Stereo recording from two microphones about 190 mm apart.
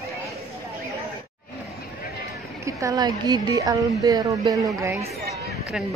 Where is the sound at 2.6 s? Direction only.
15° right (ahead or behind).